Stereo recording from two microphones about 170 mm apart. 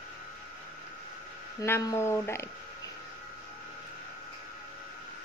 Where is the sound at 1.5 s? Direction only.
20° left (ahead or behind).